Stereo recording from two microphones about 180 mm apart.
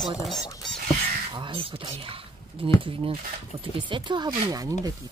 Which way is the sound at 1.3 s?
30° right (ahead or behind).